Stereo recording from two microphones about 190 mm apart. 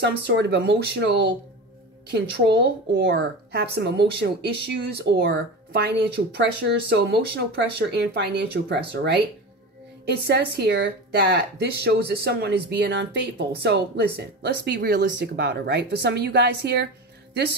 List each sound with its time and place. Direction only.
0.0 s speech: 65° right (ahead or behind)